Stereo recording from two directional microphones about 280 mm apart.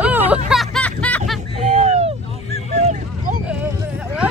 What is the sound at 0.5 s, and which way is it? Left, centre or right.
Music, centre.